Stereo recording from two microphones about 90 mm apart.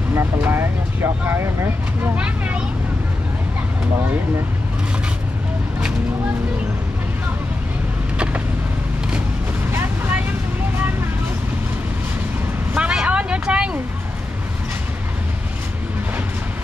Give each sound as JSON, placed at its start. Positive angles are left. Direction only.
{"t": 0.1, "sound": "speech", "side_deg": -25}
{"t": 2.1, "sound": "speech", "side_deg": -15}
{"t": 9.7, "sound": "vehicle", "side_deg": -25}
{"t": 12.7, "sound": "vehicle", "side_deg": -10}